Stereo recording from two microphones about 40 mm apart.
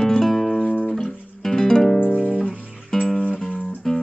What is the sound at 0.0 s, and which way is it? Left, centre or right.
Music, centre.